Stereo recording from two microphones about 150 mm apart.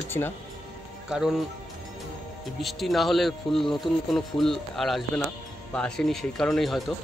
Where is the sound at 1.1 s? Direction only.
5° right (ahead or behind).